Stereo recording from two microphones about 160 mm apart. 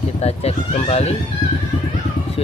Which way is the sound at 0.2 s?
40° left (ahead or behind).